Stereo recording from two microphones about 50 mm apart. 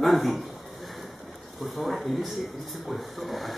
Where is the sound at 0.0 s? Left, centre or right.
Centre.